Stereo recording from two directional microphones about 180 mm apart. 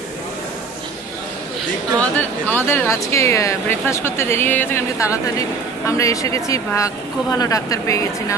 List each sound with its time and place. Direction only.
2.0 s speech: 10° left (ahead or behind)